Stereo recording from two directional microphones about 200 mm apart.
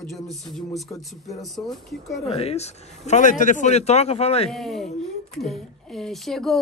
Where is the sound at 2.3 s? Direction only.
30° left (ahead or behind).